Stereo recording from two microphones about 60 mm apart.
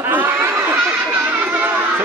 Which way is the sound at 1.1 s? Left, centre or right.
Right.